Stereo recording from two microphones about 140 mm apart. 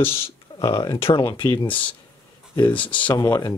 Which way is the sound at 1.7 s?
10° left (ahead or behind).